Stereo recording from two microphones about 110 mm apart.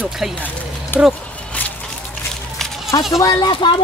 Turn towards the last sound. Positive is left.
turn(degrees=50)  # may be behind; listen again after turning